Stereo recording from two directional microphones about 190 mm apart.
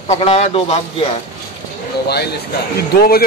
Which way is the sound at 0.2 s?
30° left (ahead or behind).